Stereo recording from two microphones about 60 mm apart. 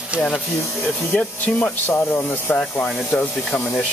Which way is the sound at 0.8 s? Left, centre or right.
Centre.